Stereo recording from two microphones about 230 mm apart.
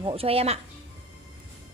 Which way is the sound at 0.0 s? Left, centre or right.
Right.